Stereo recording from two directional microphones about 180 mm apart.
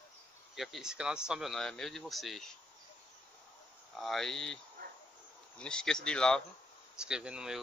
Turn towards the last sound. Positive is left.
turn(degrees=-5)  # may be behind; listen again after turning